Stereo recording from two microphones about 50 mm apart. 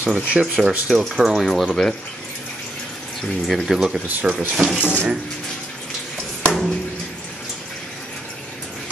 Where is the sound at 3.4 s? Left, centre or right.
Centre.